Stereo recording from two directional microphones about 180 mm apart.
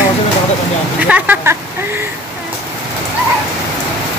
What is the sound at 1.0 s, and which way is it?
Speech, 10° right (ahead or behind).